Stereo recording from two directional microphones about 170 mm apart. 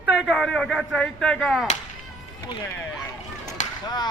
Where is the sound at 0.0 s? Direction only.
85° left.